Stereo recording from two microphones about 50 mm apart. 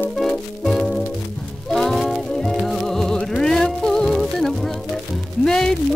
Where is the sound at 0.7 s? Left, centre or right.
Centre.